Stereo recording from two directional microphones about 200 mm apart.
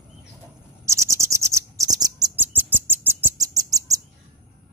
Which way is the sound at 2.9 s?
10° right (ahead or behind).